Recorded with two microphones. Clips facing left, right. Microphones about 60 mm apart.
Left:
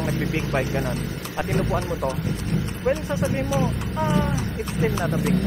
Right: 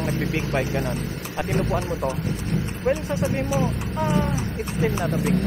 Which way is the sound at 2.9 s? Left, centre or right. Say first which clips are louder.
Even; centre.